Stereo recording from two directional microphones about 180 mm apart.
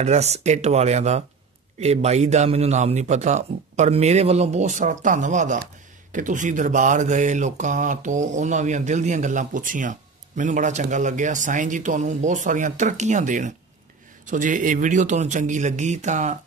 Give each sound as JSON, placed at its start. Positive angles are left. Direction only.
{"t": 0.0, "sound": "a man's voice", "side_deg": -35}